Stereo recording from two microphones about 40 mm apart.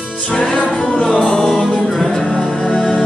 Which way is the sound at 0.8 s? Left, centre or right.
Centre.